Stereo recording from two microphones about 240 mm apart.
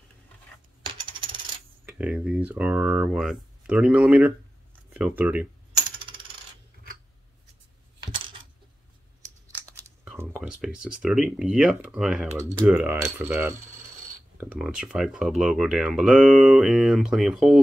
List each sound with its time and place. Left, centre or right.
1.9 s speech: centre
4.9 s coin: centre
10.0 s speech: centre